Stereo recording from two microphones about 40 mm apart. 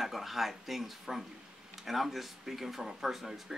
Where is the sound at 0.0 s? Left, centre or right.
Centre.